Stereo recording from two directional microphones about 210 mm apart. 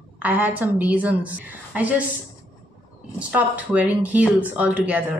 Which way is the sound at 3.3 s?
5° right (ahead or behind).